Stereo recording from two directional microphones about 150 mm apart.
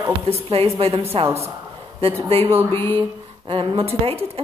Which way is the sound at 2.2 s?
40° right (ahead or behind).